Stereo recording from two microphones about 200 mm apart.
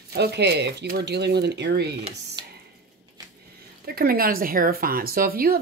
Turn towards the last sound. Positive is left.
turn(degrees=-45)  # may be behind; listen again after turning